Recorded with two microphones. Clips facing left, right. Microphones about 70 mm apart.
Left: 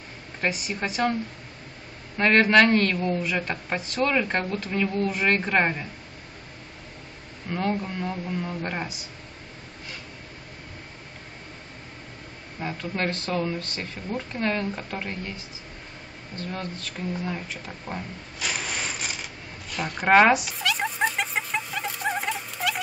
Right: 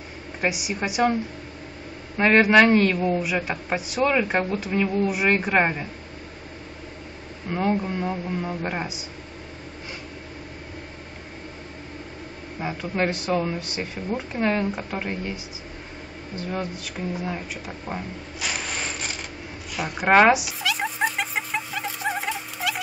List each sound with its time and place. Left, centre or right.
0.4 s a man's voice: centre
2.1 s a man's voice: centre
7.4 s a man's voice: centre
12.5 s a man's voice: centre
19.7 s music: centre